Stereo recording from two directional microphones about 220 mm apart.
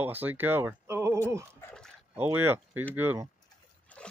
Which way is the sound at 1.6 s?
5° left (ahead or behind).